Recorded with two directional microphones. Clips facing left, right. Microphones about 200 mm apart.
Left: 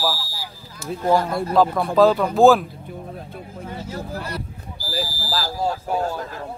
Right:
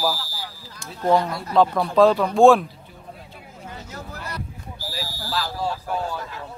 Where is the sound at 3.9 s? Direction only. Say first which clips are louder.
Left 7 dB; 30° left (ahead or behind).